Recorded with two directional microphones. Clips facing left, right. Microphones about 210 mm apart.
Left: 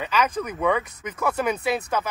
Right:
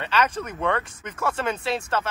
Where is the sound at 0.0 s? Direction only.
10° left (ahead or behind).